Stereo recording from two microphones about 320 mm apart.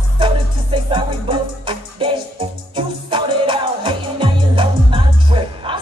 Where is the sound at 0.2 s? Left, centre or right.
Centre.